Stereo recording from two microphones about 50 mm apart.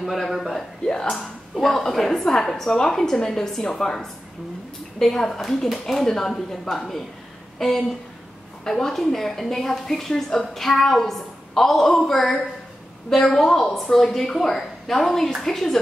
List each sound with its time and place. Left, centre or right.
0.0 s a woman's voice: centre
0.8 s speech: centre
1.1 s a woman's voice: centre